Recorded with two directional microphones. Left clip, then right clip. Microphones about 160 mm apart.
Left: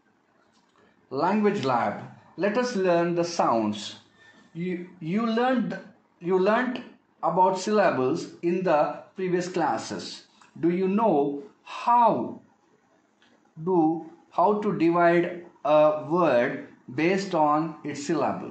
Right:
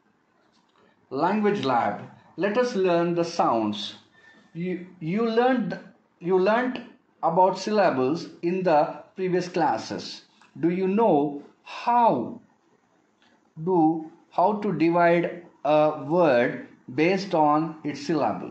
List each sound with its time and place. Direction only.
1.0 s speech: 10° right (ahead or behind)
4.6 s speech: 25° right (ahead or behind)
13.7 s speech: 30° right (ahead or behind)